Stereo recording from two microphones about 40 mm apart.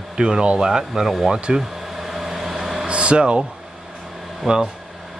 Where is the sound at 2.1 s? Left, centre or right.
Centre.